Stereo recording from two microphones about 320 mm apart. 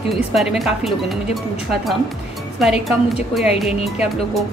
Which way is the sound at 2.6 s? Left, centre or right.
Centre.